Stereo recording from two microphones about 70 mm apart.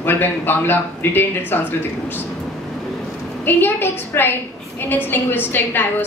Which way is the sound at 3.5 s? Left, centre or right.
Left.